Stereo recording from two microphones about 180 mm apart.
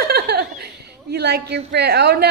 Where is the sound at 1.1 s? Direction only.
65° right (ahead or behind).